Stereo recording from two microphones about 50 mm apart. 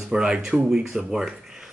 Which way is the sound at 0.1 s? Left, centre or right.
Centre.